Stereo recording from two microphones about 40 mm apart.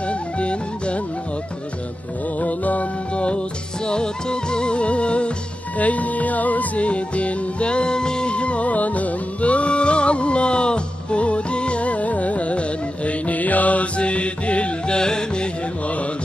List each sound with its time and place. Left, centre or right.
0.0 s music: left
2.4 s music: left
3.8 s music: left
5.8 s music: left
15.0 s music: centre